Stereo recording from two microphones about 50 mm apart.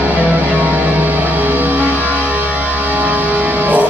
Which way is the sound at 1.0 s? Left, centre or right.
Right.